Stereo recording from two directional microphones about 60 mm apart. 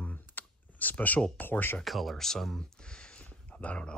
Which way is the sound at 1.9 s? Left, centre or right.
Centre.